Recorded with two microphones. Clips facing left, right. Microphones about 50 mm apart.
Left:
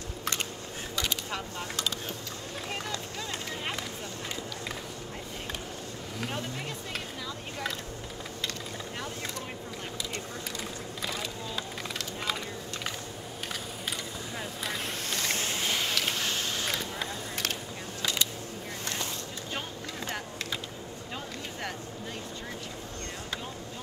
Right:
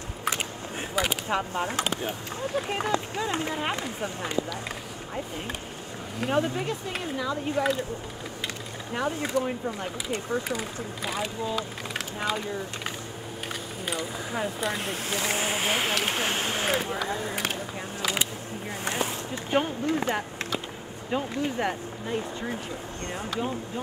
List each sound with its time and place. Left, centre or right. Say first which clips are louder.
0.9 s speech: right 7 dB; centre
6.3 s speech: right 10 dB; centre
8.9 s speech: right 14 dB; right
14.6 s speech: right 5 dB; centre; by 17.0 s right
18.0 s a sound: right 2 dB; centre
21.1 s speech: right 13 dB; right